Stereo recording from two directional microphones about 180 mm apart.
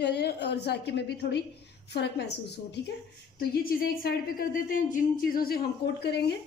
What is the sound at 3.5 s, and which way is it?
A woman's voice, 55° left (ahead or behind).